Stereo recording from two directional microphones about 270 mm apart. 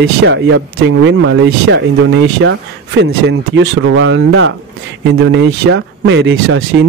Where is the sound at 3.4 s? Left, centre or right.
Right.